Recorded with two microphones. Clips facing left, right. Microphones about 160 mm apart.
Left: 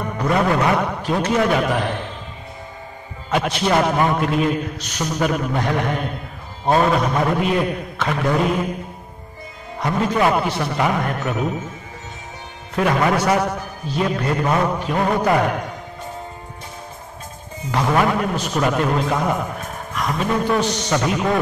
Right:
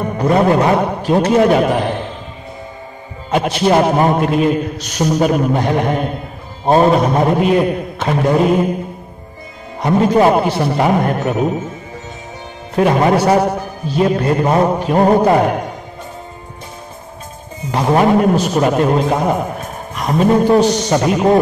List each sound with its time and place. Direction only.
0.0 s a man's voice: 30° right (ahead or behind)
3.6 s mantra: 30° right (ahead or behind)
4.2 s a man's voice: 40° right (ahead or behind)
8.0 s mantra: 30° right (ahead or behind)
9.8 s a man's voice: 30° right (ahead or behind)
12.7 s a man's voice: 30° right (ahead or behind)
17.6 s a man's voice: 25° right (ahead or behind)